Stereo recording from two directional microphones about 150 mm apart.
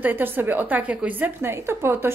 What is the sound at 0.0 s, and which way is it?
A woman's voice, 15° right (ahead or behind).